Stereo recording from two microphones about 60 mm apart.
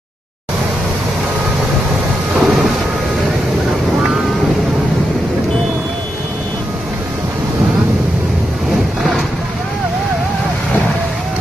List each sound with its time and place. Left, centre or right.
2.3 s thunder: centre